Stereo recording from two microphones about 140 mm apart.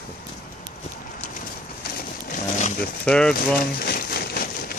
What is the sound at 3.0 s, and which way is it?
Speech, 5° left (ahead or behind).